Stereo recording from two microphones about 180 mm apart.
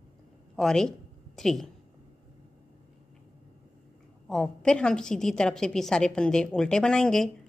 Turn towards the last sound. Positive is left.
turn(degrees=5)  # may be behind; listen again after turning